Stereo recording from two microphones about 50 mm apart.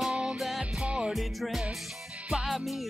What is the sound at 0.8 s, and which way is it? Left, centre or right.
Music, centre.